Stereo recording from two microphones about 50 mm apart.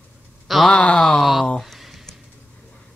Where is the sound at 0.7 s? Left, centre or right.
Centre.